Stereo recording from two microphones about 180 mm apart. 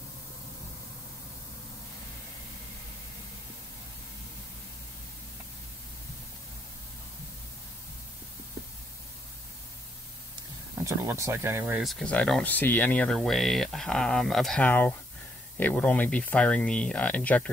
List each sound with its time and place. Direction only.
10.8 s speech: 15° right (ahead or behind)
11.8 s speech: 5° left (ahead or behind)